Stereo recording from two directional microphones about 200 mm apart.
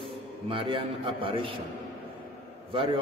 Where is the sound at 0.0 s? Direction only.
25° right (ahead or behind).